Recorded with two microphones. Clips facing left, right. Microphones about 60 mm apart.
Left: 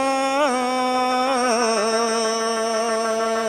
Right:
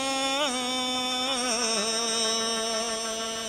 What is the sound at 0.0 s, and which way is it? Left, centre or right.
Music, left.